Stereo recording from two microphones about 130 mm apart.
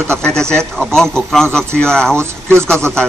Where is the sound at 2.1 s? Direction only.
20° right (ahead or behind).